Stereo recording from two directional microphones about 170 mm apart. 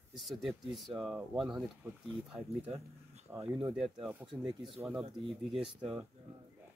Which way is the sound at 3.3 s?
15° right (ahead or behind).